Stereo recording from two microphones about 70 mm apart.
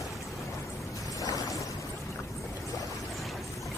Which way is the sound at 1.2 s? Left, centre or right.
Left.